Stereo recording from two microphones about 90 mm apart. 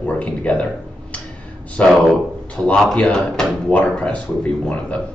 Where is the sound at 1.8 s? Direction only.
15° left (ahead or behind).